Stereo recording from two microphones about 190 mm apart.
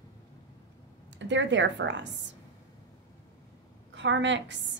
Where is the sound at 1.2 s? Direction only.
70° right (ahead or behind).